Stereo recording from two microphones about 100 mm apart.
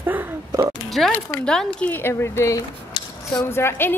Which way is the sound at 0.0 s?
20° right (ahead or behind).